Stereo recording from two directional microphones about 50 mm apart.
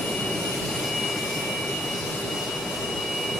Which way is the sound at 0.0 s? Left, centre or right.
Centre.